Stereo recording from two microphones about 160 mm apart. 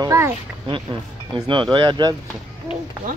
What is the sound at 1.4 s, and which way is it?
Speech, 30° right (ahead or behind).